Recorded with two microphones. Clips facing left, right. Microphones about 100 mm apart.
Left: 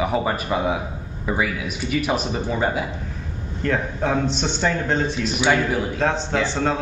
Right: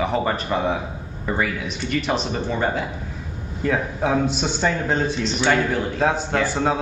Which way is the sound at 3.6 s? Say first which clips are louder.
Right 1 dB; 5° right (ahead or behind).